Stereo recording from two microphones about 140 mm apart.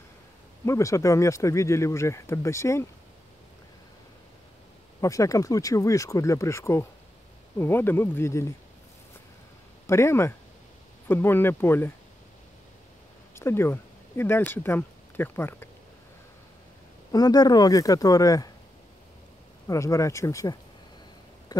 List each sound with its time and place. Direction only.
0.7 s speech: 20° left (ahead or behind)
5.0 s speech: 25° left (ahead or behind)
9.8 s speech: 20° left (ahead or behind)
13.3 s speech: 20° left (ahead or behind)
17.1 s speech: 30° left (ahead or behind)
19.7 s speech: 20° left (ahead or behind)